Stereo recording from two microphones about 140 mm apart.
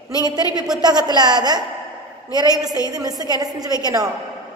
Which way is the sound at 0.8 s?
30° right (ahead or behind).